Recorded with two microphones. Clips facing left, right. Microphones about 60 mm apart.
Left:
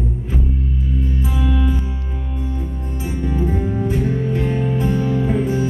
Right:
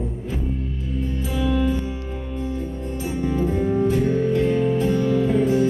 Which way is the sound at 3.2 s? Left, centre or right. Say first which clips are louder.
Even; centre.